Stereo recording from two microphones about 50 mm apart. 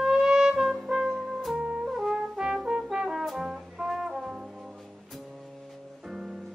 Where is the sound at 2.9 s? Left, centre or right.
Centre.